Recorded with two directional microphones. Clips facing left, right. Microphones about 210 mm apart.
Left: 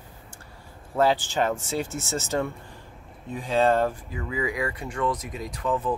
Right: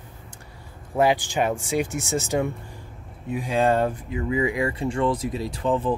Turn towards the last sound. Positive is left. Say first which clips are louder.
# right 3 dB
turn(degrees=-30)  # may be behind; listen again after turning